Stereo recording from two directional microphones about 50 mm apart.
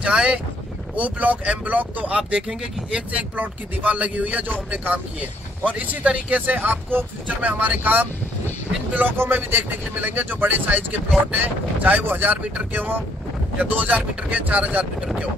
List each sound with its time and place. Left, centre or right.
0.0 s speech: centre
0.9 s a man's voice: right
7.2 s speech: right
9.2 s a man's voice: right